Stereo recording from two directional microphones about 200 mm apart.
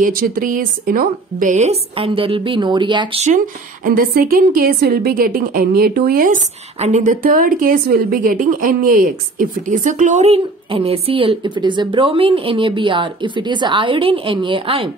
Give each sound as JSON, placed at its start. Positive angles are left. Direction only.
{"t": 0.0, "sound": "a woman's voice", "side_deg": -45}
{"t": 3.8, "sound": "a woman's voice", "side_deg": -45}